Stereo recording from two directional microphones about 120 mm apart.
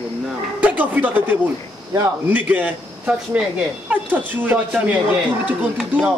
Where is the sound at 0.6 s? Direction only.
15° right (ahead or behind).